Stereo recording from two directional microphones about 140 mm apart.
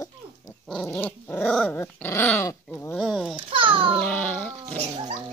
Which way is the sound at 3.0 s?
5° right (ahead or behind).